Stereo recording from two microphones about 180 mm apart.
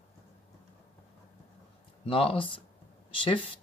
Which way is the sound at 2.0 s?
30° left (ahead or behind).